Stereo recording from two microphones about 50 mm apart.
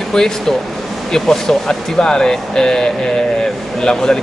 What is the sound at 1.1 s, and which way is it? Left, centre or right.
Speech, centre.